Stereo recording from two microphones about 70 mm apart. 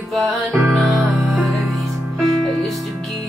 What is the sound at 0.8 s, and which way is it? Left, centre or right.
Music, right.